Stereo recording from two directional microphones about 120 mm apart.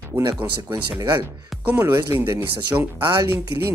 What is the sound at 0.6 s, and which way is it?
Speech, 20° right (ahead or behind).